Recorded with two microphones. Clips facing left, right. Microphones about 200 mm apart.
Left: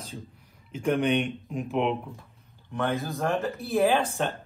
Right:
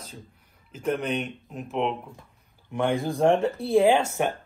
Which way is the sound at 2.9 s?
30° right (ahead or behind).